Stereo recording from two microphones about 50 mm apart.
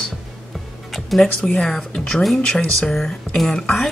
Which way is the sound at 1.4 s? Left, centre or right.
Centre.